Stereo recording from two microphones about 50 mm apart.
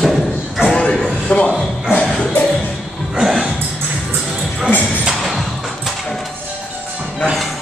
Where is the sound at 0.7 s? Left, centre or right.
Centre.